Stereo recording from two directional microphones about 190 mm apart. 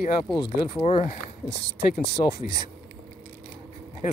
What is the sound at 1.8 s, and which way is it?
Speech, 60° left (ahead or behind).